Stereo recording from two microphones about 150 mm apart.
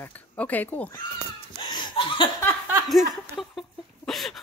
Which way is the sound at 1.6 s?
30° left (ahead or behind).